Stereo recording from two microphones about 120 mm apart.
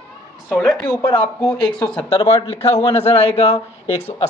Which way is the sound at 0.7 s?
40° left (ahead or behind).